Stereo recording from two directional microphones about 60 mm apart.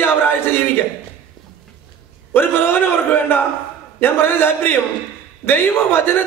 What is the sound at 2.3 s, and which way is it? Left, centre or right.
A man's voice, left.